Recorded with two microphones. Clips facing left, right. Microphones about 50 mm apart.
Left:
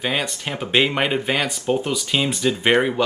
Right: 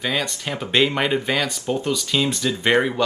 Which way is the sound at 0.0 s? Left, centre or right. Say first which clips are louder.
Left 1 dB; centre.